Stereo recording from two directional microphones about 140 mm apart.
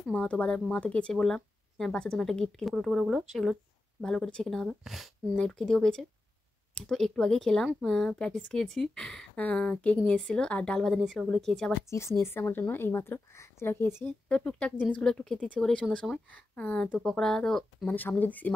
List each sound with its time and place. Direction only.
0.0 s speech: 5° left (ahead or behind)
11.9 s speech: 20° left (ahead or behind)